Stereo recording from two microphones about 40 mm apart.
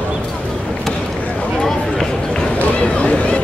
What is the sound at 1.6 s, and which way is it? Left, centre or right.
Run, centre.